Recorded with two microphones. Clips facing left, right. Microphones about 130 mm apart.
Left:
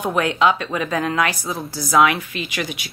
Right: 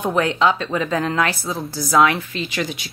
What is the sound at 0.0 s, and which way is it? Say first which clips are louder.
Speech: even; 10° left (ahead or behind).